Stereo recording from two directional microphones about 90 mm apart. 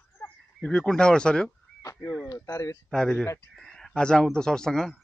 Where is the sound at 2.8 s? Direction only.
5° left (ahead or behind).